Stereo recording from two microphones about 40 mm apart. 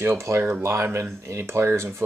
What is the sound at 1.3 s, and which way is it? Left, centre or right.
Speech, right.